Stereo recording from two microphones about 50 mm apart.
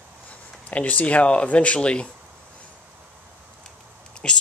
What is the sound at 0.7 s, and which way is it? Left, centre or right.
Speech, left.